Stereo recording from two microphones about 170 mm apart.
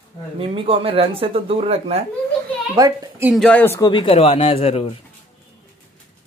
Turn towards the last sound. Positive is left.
turn(degrees=35)  # may be behind; listen again after turning